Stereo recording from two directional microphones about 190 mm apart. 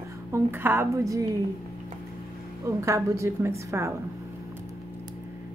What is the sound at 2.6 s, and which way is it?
A woman's voice, 15° right (ahead or behind).